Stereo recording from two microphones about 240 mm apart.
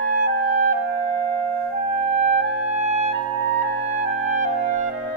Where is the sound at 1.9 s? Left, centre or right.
Right.